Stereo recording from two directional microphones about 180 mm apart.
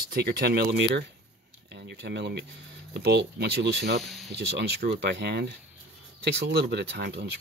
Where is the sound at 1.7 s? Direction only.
70° right (ahead or behind).